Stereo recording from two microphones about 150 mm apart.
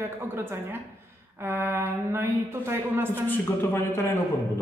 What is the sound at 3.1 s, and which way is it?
A man's voice, 15° left (ahead or behind).